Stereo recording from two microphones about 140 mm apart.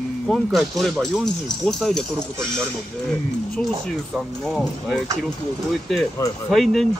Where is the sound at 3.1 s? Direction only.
5° left (ahead or behind).